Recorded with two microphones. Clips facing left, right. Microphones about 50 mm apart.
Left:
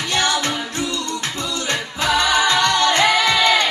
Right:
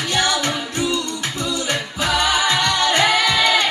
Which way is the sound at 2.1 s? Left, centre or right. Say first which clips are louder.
Left 2 dB; centre.